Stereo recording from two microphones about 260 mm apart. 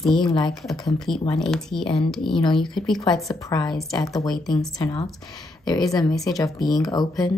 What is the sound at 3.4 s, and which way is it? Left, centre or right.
Speech, centre.